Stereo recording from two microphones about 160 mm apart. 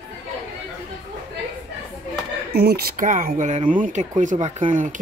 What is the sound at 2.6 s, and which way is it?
Speech, 75° right (ahead or behind).